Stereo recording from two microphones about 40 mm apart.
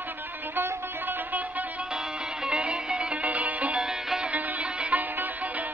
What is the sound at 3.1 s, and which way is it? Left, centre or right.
Music, right.